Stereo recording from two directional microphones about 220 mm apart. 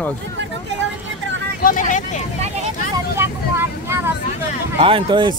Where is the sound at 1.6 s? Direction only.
35° left (ahead or behind).